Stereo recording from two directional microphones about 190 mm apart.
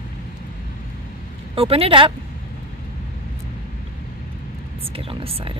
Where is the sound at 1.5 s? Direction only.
30° right (ahead or behind).